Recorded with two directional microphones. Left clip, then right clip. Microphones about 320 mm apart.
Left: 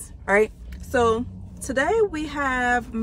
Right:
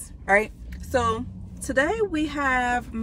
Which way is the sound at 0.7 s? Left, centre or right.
Centre.